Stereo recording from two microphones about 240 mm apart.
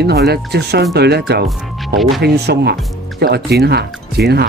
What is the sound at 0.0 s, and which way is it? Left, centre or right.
Speech, right.